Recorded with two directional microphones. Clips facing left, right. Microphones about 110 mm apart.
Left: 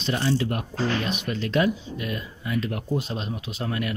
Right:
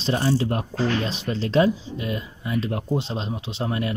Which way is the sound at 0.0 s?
30° right (ahead or behind).